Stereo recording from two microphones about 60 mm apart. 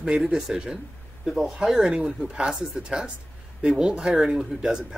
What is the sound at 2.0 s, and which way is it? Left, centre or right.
Speech, right.